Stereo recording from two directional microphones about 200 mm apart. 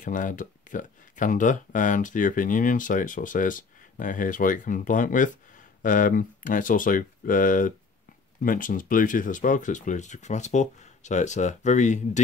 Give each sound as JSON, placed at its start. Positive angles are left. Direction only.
{"t": 0.0, "sound": "speech", "side_deg": 40}